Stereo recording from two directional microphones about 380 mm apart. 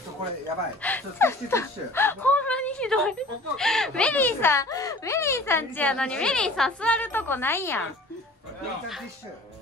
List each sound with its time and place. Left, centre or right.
0.8 s speech: centre